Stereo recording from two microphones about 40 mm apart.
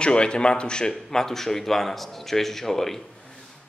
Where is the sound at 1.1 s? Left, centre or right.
Centre.